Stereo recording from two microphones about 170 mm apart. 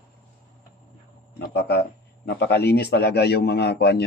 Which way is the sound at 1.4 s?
75° left (ahead or behind).